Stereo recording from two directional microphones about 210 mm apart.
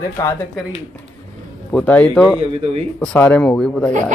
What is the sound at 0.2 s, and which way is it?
Speech, 10° left (ahead or behind).